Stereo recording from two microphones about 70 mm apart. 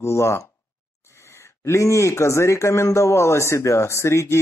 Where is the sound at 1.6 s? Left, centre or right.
Left.